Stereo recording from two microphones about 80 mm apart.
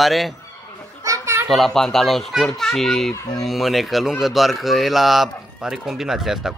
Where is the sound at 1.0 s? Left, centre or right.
Right.